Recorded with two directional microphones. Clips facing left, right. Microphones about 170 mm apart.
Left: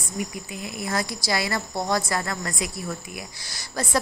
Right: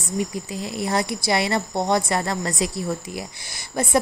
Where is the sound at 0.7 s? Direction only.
30° right (ahead or behind).